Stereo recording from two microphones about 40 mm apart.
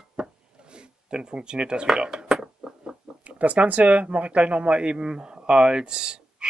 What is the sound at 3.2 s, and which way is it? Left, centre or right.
Speech, right.